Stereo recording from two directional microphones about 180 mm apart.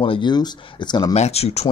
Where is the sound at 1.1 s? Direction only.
35° left (ahead or behind).